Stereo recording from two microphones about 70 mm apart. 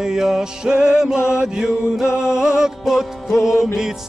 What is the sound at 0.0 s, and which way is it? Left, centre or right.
Music, centre.